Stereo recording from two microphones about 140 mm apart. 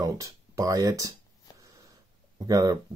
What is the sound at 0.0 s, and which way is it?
Speech, 25° right (ahead or behind).